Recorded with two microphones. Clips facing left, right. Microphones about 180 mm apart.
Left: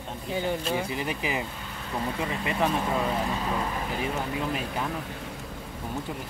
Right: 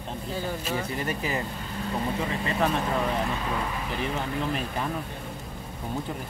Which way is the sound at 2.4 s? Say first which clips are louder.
Even; 10° left (ahead or behind).